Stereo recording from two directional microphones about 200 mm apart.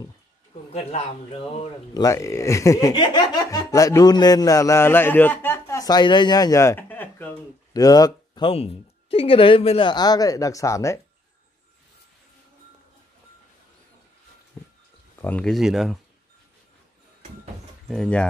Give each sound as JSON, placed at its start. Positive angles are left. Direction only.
{"t": 0.7, "sound": "a man's voice", "side_deg": 30}
{"t": 2.0, "sound": "speech", "side_deg": 15}
{"t": 15.1, "sound": "speech", "side_deg": 10}
{"t": 17.8, "sound": "speech", "side_deg": 0}